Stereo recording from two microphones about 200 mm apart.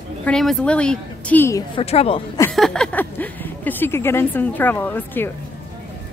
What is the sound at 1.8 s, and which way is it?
Speech, 30° left (ahead or behind).